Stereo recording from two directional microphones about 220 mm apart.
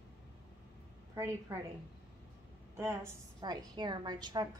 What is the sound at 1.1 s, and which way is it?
Speech, 15° right (ahead or behind).